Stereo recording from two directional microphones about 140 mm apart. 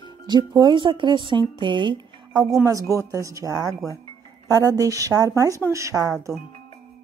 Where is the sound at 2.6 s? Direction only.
25° right (ahead or behind).